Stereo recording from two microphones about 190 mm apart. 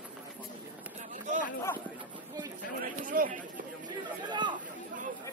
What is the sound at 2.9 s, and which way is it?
Chatter, 45° right (ahead or behind).